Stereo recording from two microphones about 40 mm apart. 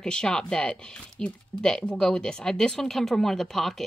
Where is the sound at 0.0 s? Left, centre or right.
Centre.